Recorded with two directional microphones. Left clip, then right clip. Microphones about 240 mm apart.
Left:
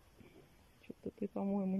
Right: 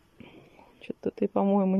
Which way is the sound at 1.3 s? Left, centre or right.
Centre.